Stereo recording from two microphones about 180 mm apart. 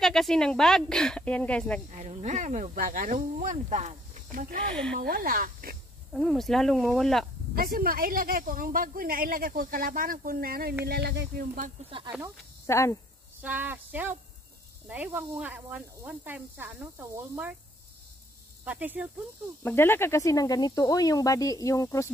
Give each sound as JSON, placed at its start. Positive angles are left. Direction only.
{"t": 0.0, "sound": "speech", "side_deg": 0}
{"t": 1.9, "sound": "speech", "side_deg": -40}
{"t": 6.1, "sound": "speech", "side_deg": 0}
{"t": 7.5, "sound": "speech", "side_deg": -55}
{"t": 12.6, "sound": "speech", "side_deg": 15}
{"t": 13.4, "sound": "speech", "side_deg": -10}
{"t": 18.7, "sound": "speech", "side_deg": -10}
{"t": 19.6, "sound": "speech", "side_deg": 10}